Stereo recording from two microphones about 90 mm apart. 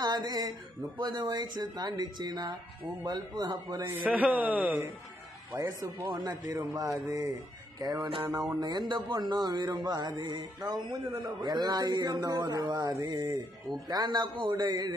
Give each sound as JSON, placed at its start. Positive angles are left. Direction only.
{"t": 0.0, "sound": "a man's voice", "side_deg": -50}
{"t": 4.1, "sound": "a man's voice", "side_deg": -15}
{"t": 5.6, "sound": "a man's voice", "side_deg": -40}